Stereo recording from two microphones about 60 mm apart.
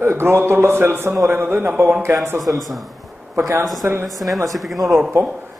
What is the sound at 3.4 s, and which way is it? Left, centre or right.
Speech, right.